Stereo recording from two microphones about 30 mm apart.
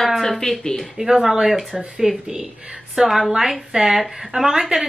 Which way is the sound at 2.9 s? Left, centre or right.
Centre.